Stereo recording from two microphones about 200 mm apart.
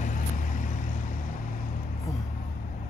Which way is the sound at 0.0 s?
40° left (ahead or behind).